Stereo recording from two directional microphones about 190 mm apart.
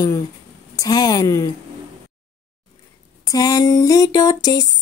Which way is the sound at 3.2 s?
20° left (ahead or behind).